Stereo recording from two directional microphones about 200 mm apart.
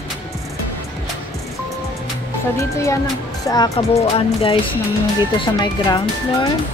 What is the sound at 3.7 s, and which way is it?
Speech, 30° left (ahead or behind).